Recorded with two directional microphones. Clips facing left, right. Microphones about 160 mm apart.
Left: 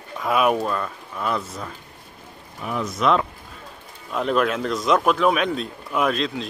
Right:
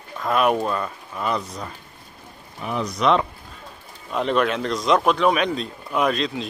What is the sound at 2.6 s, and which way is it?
Speech, centre (ahead or behind).